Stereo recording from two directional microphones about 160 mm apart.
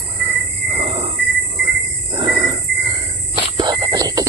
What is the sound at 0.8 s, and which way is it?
Cricket, 35° right (ahead or behind).